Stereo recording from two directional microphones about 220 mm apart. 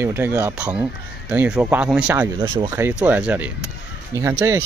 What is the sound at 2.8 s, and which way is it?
Speech, 10° right (ahead or behind).